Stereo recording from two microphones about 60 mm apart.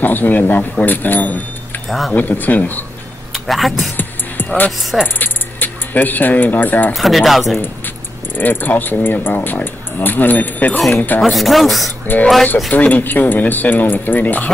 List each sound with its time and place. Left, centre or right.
0.0 s speech: left
1.9 s speech: centre
2.1 s speech: left
3.3 s speech: centre
3.9 s music: left
5.0 s speech: left
6.9 s speech: centre
8.4 s speech: left
11.1 s speech: centre
12.7 s speech: left